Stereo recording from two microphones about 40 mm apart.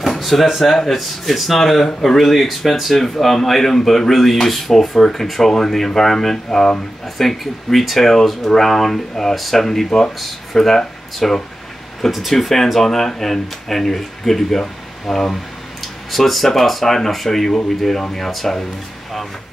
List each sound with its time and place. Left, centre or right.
0.0 s a sound: centre
0.6 s speech: centre
7.2 s speech: centre
9.8 s speech: centre
12.1 s speech: centre